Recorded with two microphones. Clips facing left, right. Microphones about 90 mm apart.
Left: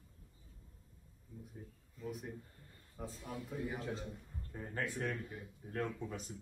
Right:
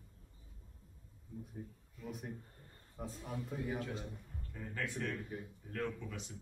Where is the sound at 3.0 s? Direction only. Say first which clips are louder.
Right 1 dB; 10° right (ahead or behind).